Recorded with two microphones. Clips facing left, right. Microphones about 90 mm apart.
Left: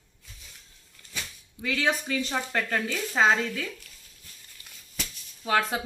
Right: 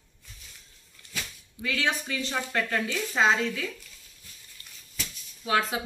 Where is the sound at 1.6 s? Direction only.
25° left (ahead or behind).